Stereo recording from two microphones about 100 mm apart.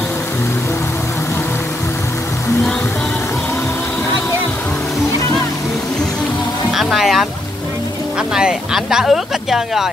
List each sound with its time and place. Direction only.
6.7 s music: centre (ahead or behind)
8.4 s speech: 5° right (ahead or behind)